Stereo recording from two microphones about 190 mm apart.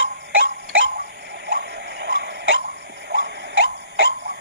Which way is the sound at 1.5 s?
70° right (ahead or behind).